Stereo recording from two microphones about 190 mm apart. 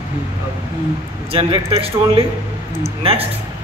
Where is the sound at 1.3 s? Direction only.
30° right (ahead or behind).